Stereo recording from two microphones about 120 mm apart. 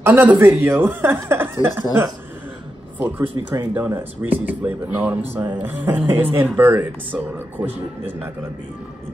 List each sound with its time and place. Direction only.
0.0 s speech: 15° right (ahead or behind)
3.2 s speech: 15° right (ahead or behind)